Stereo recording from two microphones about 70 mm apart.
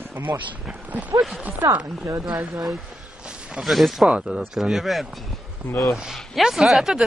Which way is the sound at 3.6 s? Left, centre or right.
Centre.